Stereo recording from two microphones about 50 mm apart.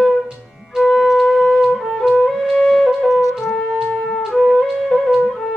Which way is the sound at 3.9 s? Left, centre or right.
Left.